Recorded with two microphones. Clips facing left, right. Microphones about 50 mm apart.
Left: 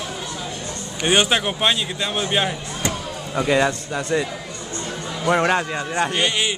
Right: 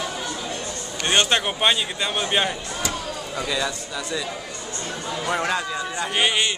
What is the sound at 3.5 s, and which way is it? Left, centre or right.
Speech, left.